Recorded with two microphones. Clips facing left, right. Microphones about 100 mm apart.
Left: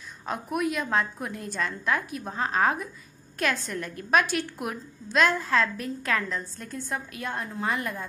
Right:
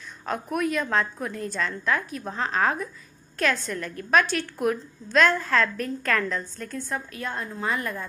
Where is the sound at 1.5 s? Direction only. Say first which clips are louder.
Even; 45° left (ahead or behind).